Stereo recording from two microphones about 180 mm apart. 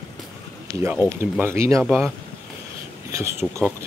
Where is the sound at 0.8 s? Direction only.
10° right (ahead or behind).